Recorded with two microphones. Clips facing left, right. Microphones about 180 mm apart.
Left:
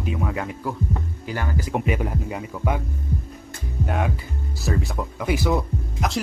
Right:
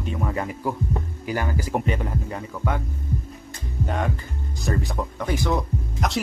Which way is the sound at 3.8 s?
5° left (ahead or behind).